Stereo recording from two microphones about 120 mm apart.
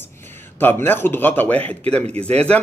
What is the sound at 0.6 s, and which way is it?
A man's voice, 15° left (ahead or behind).